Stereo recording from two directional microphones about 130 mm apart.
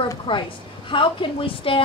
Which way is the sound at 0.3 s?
40° left (ahead or behind).